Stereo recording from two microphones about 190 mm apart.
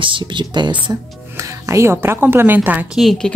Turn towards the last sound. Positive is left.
turn(degrees=0)  # may be behind; listen again after turning